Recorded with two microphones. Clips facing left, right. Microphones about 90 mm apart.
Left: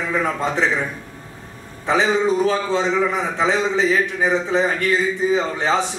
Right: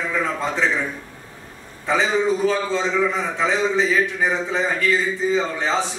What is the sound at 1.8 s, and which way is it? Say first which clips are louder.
A man's voice: left 2 dB; 15° left (ahead or behind).